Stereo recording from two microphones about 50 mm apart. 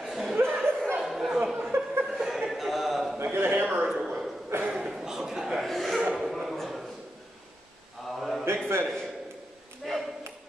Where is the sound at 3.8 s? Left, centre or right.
Centre.